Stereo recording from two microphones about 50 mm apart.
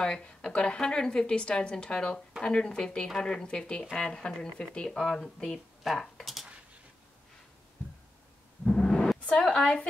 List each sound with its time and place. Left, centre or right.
0.2 s a woman's voice: left; by 6.4 s centre
8.6 s a sound: centre
9.5 s a woman's voice: centre